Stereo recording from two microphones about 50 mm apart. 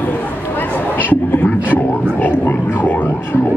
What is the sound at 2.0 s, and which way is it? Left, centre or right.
Speech, left.